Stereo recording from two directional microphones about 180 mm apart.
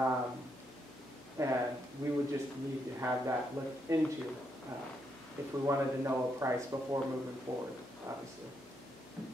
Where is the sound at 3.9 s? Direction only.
15° right (ahead or behind).